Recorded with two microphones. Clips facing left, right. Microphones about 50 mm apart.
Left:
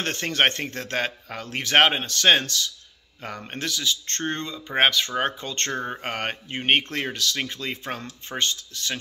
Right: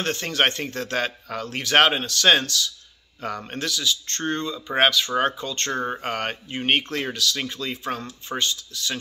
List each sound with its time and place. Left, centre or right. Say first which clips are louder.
0.0 s speech: even; left
3.2 s speech: right 3 dB; centre; by 8.9 s left